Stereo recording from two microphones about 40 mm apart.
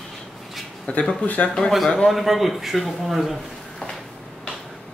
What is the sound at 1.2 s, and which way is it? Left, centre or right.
Speech, left.